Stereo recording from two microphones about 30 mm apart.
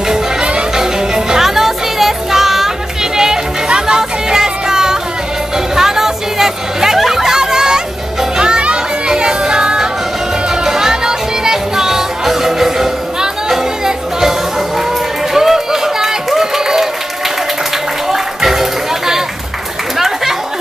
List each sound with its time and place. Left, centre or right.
0.1 s music: right
1.4 s music: centre
3.0 s music: centre
7.3 s children playing: right
8.4 s music: right
8.6 s crowd: right
9.4 s music: right
10.5 s music: centre
15.3 s a sound: centre
18.0 s a sound: centre